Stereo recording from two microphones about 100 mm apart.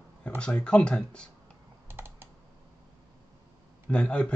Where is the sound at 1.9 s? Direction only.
25° right (ahead or behind).